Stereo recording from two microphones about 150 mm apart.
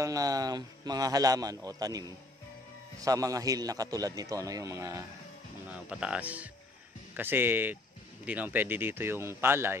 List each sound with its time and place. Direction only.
0.0 s a man's voice: 25° right (ahead or behind)
5.7 s speech: 10° right (ahead or behind)